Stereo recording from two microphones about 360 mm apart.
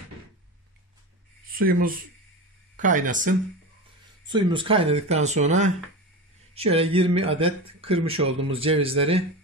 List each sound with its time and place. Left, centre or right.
1.6 s speech: right